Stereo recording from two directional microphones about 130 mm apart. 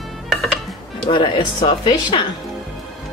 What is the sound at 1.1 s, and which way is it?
Speech, 40° left (ahead or behind).